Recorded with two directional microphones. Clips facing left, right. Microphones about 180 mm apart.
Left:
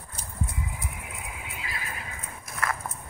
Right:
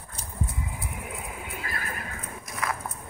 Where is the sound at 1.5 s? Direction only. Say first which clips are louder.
Right 3 dB; 50° right (ahead or behind).